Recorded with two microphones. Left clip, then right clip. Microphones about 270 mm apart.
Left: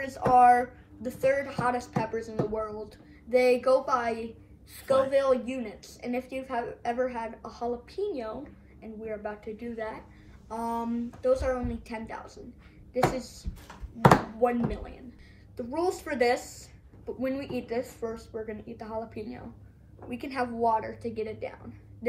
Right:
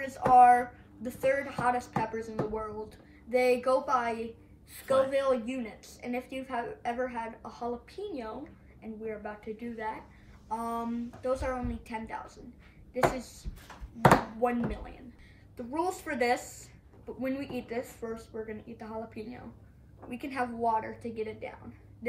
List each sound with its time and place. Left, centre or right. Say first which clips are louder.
0.0 s a woman's voice: even; centre
11.2 s a woman's voice: left 6 dB; centre